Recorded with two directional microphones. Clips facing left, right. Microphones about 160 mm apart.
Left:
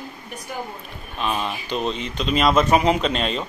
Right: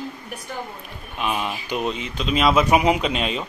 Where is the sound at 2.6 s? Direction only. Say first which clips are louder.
Even; 10° right (ahead or behind).